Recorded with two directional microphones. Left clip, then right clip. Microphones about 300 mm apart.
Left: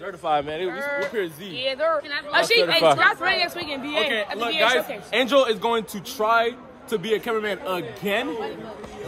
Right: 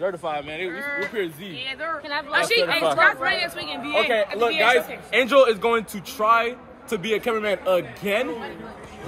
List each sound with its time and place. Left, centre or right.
0.2 s a man's voice: centre
0.7 s speech: left
4.4 s a man's voice: centre